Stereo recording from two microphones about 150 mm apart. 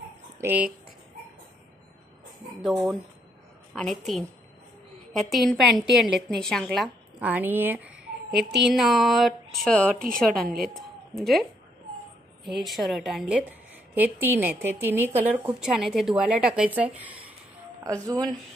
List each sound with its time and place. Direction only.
0.4 s a woman's voice: 10° right (ahead or behind)
2.6 s a woman's voice: centre (ahead or behind)
7.2 s a woman's voice: 10° right (ahead or behind)
10.9 s a sound: centre (ahead or behind)
12.4 s a woman's voice: centre (ahead or behind)
17.8 s speech: 20° right (ahead or behind)